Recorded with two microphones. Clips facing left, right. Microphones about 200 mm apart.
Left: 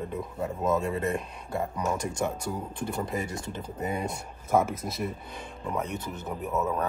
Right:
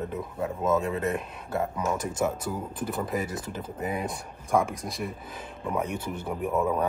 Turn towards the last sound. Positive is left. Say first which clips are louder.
# right 3 dB
turn(degrees=-10)  # may be behind; listen again after turning